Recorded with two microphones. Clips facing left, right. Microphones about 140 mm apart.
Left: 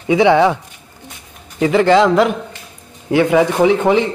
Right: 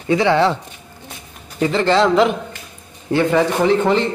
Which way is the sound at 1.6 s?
10° left (ahead or behind).